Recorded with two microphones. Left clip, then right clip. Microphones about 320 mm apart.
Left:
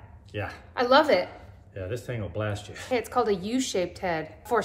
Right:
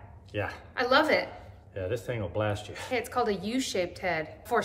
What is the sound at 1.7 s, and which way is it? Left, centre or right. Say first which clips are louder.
Snicker: right 2 dB; centre.